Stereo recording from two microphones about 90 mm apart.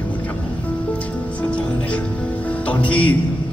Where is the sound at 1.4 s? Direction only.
15° left (ahead or behind).